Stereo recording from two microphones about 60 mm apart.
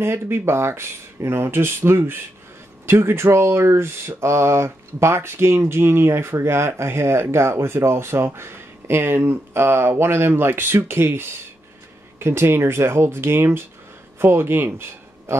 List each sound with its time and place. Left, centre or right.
0.0 s a man's voice: right